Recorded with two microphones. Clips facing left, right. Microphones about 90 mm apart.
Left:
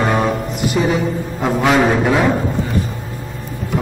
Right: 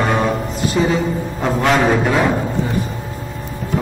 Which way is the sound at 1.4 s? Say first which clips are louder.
Left 1 dB; 5° left (ahead or behind).